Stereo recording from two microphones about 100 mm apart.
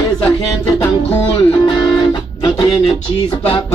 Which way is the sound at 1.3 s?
50° left (ahead or behind).